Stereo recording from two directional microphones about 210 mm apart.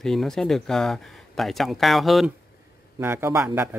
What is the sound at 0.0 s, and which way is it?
Speech, centre (ahead or behind).